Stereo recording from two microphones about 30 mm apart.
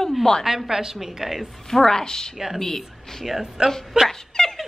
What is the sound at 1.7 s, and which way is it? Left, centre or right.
A woman's voice, centre.